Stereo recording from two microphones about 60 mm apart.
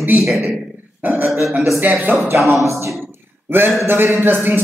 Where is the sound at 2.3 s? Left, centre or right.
Right.